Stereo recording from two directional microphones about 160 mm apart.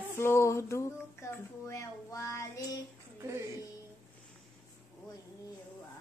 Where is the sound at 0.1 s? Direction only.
15° left (ahead or behind).